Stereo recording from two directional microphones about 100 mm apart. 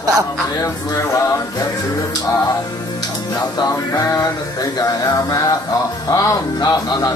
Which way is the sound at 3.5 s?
35° left (ahead or behind).